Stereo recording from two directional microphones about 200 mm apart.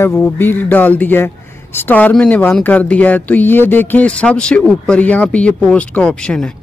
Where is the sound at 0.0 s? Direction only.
15° left (ahead or behind).